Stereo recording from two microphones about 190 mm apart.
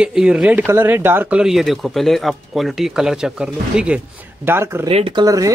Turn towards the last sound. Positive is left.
turn(degrees=-20)  # may be behind; listen again after turning